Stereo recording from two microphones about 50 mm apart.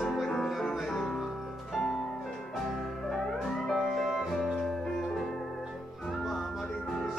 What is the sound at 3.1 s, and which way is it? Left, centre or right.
Music, centre.